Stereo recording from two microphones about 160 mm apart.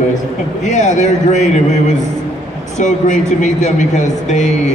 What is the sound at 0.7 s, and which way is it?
Speech, 50° left (ahead or behind).